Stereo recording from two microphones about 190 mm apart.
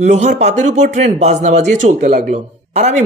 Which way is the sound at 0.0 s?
40° right (ahead or behind).